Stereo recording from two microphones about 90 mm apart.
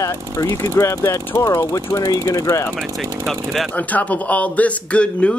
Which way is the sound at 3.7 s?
15° left (ahead or behind).